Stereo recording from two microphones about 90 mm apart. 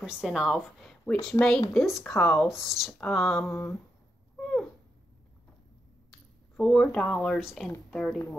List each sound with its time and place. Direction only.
0.0 s a woman's voice: 10° right (ahead or behind)
1.4 s speech: 35° left (ahead or behind)
1.7 s a woman's voice: centre (ahead or behind)
2.5 s a woman's voice: centre (ahead or behind)
3.4 s humming: 20° left (ahead or behind)
4.4 s cat: 10° left (ahead or behind)
6.5 s speech: 10° left (ahead or behind)
7.3 s a woman's voice: centre (ahead or behind)